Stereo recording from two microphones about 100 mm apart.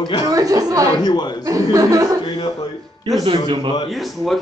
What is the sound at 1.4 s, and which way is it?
Speech, 35° right (ahead or behind).